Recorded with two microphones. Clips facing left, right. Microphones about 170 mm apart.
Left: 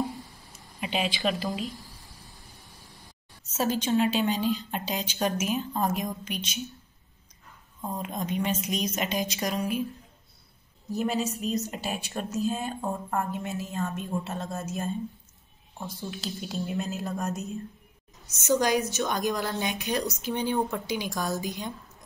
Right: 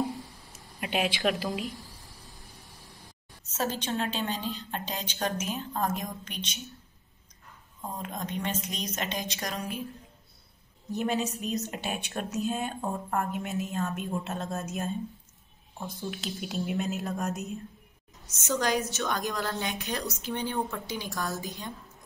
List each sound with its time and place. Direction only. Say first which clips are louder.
0.7 s speech: even; 65° right (ahead or behind)
1.7 s a sound: even; centre (ahead or behind)
3.5 s a woman's voice: left 6 dB; 5° left (ahead or behind)
8.0 s a woman's voice: left 4 dB; 10° left (ahead or behind)
10.9 s a woman's voice: left 1 dB; 5° left (ahead or behind)
18.5 s a woman's voice: left 4 dB; 10° left (ahead or behind)